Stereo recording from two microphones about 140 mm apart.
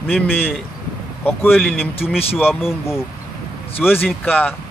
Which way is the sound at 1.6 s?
Centre (ahead or behind).